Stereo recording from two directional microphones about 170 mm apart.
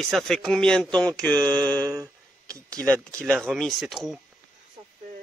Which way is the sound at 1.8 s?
20° right (ahead or behind).